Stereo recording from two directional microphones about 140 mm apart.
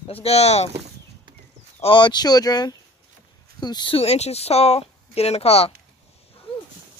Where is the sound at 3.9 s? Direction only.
50° left (ahead or behind).